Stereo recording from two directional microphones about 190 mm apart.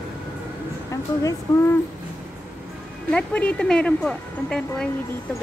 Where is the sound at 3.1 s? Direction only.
5° left (ahead or behind).